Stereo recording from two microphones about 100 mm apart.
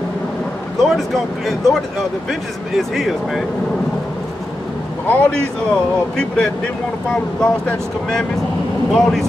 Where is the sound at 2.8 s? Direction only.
Centre (ahead or behind).